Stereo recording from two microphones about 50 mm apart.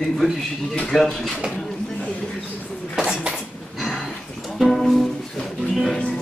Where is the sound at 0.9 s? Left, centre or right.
Centre.